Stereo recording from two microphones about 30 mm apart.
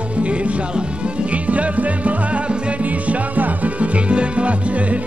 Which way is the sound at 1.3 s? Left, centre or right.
Right.